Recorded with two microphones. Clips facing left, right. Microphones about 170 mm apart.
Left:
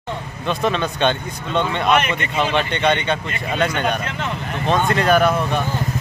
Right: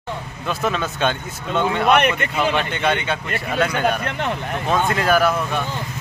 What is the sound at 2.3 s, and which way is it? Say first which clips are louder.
Speech: left 1 dB; 5° right (ahead or behind).